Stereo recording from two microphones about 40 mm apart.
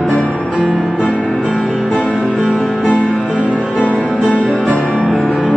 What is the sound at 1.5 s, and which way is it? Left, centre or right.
Music, centre.